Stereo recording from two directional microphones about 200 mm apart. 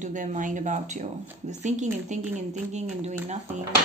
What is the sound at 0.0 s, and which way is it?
Speech, 40° right (ahead or behind).